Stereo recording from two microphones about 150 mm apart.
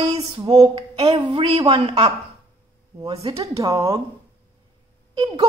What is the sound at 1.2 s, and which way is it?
Speech, 35° right (ahead or behind).